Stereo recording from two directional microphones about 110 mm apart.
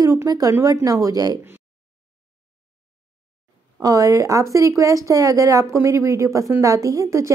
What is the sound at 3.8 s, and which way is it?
A woman's voice, 35° right (ahead or behind).